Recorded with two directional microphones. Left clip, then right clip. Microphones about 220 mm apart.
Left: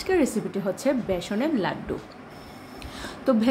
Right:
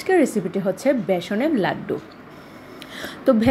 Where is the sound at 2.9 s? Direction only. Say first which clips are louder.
Right 5 dB; 15° right (ahead or behind).